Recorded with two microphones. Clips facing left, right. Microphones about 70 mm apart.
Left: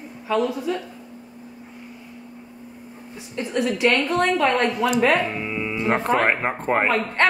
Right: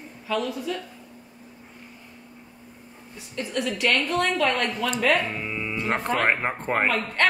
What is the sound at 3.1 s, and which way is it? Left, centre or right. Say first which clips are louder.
A woman's voice: left 4 dB; left.